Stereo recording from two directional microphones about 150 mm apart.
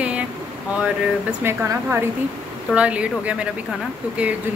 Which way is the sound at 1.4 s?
15° right (ahead or behind).